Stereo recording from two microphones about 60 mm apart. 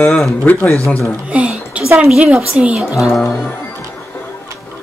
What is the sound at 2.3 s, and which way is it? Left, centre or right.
Speech, centre.